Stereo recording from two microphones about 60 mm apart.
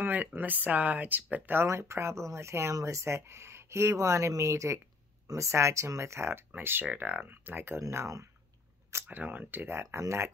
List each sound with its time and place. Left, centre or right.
0.0 s speech: right
6.5 s speech: right
7.8 s speech: right
9.0 s speech: right
9.8 s speech: right